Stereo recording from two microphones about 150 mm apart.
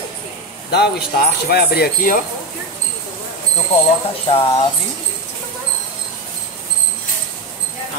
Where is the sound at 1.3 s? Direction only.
90° left.